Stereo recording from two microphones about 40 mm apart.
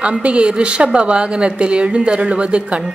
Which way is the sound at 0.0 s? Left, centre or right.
Right.